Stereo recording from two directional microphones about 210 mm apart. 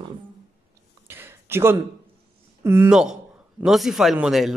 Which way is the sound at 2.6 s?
10° right (ahead or behind).